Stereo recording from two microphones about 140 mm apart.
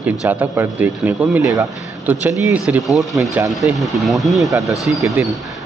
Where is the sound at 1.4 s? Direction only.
25° right (ahead or behind).